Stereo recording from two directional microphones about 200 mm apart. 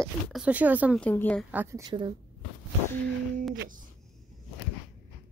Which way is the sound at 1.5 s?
10° right (ahead or behind).